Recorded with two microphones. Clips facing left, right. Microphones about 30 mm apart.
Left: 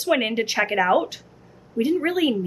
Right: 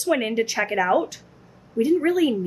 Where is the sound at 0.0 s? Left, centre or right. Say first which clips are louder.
Even; left.